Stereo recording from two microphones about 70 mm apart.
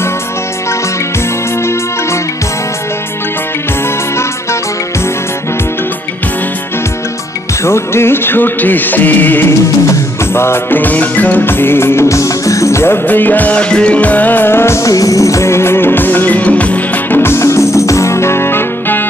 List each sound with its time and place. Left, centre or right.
7.6 s music: left
9.5 s music: left
14.8 s music: left